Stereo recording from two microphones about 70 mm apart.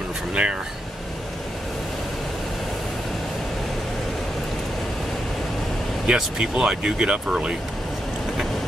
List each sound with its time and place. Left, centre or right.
0.3 s speech: centre
6.0 s speech: centre